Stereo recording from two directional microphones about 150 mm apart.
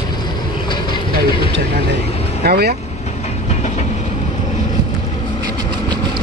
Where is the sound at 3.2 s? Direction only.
50° left (ahead or behind).